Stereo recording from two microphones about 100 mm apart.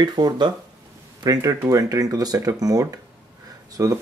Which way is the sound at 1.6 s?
35° right (ahead or behind).